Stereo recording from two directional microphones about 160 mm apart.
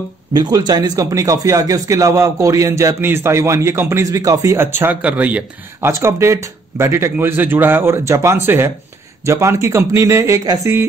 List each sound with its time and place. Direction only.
0.3 s a man's voice: 25° right (ahead or behind)